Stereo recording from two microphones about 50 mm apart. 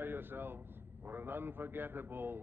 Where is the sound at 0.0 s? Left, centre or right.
Right.